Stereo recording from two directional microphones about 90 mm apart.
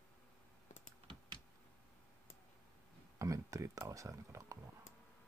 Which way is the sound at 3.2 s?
35° right (ahead or behind).